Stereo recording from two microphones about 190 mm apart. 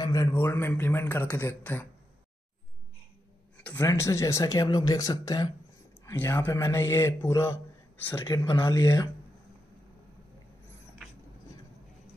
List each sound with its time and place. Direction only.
0.0 s a man's voice: 15° left (ahead or behind)
3.7 s a man's voice: 15° left (ahead or behind)